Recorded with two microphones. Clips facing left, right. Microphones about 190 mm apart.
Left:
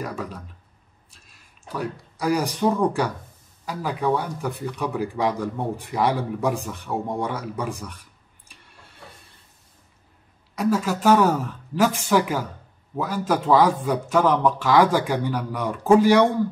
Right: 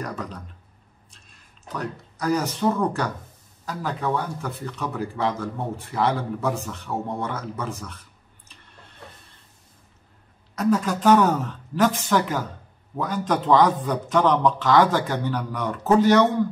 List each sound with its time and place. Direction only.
0.0 s speech: 10° left (ahead or behind)
10.5 s speech: 10° left (ahead or behind)